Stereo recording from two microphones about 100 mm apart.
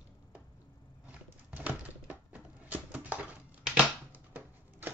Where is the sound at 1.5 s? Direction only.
15° right (ahead or behind).